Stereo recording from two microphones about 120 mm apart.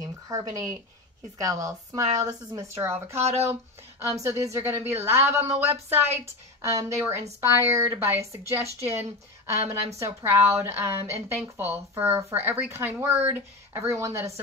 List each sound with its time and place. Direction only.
0.0 s a sound: 30° right (ahead or behind)
1.4 s a woman's voice: 30° right (ahead or behind)
3.2 s speech: 60° right (ahead or behind)
4.1 s a woman's voice: 25° right (ahead or behind)
8.6 s speech: 60° right (ahead or behind)
9.5 s a woman's voice: 25° right (ahead or behind)